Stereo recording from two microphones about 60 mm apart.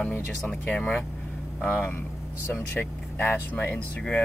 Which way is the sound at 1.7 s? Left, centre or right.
Left.